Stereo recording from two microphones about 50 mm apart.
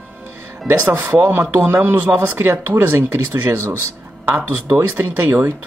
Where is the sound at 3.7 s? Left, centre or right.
Right.